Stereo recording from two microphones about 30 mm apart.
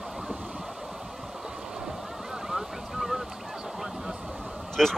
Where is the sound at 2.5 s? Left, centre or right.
Centre.